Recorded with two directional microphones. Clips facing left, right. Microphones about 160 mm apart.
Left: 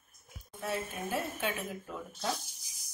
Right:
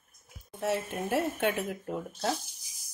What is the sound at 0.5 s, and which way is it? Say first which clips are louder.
Speech: right 6 dB; 70° right (ahead or behind).